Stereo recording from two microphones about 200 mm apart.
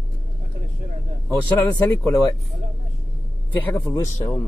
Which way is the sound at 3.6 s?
15° left (ahead or behind).